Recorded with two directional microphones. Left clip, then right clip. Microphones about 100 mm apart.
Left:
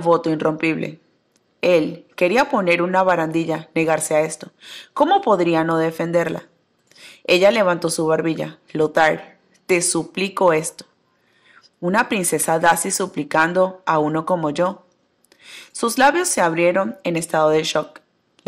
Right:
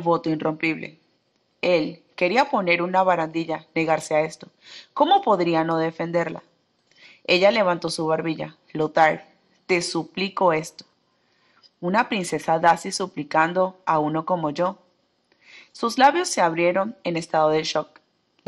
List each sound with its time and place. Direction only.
0.0 s a woman's voice: 40° left (ahead or behind)